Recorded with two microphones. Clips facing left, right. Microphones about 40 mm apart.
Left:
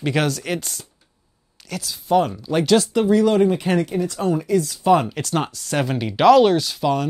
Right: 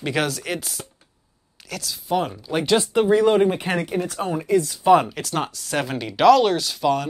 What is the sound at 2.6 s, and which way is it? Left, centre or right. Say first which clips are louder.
Speech: left 1 dB; right.